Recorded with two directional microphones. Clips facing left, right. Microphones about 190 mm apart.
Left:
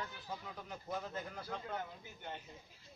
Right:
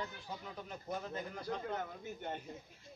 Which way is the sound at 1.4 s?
45° right (ahead or behind).